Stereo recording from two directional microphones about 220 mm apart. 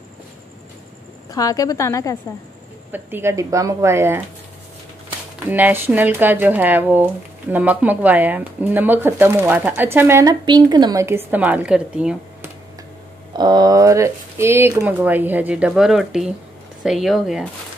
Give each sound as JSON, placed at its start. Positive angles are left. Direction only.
{"t": 1.3, "sound": "a woman's voice", "side_deg": 15}
{"t": 2.9, "sound": "speech", "side_deg": -10}
{"t": 5.5, "sound": "speech", "side_deg": -10}
{"t": 13.4, "sound": "speech", "side_deg": -20}